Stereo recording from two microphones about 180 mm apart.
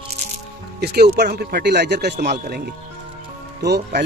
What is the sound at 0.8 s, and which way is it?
A man's voice, 65° right (ahead or behind).